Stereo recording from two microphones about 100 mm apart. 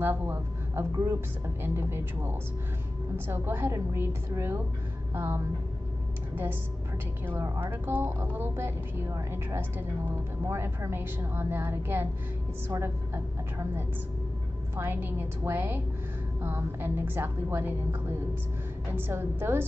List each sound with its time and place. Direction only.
0.0 s a woman's voice: 20° right (ahead or behind)
7.2 s a woman's voice: 30° right (ahead or behind)
18.9 s a woman's voice: 25° right (ahead or behind)